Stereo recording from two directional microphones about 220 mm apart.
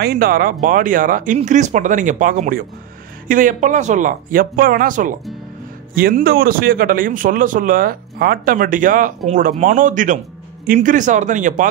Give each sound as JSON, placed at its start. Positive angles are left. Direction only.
{"t": 0.0, "sound": "speech", "side_deg": -45}